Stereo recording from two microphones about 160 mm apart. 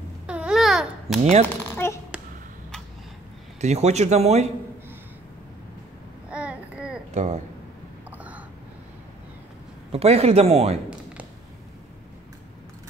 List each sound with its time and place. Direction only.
0.3 s babbling: 5° right (ahead or behind)
1.1 s speech: centre (ahead or behind)
1.8 s a sound: 15° left (ahead or behind)
3.6 s speech: 45° right (ahead or behind)
6.3 s babbling: 10° right (ahead or behind)
7.1 s speech: 45° right (ahead or behind)
8.2 s a sound: 10° right (ahead or behind)
9.9 s speech: 40° right (ahead or behind)